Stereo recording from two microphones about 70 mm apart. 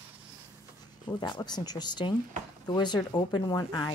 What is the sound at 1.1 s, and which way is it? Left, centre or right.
Speech, left.